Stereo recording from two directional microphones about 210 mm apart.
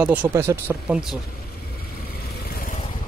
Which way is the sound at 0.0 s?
5° right (ahead or behind).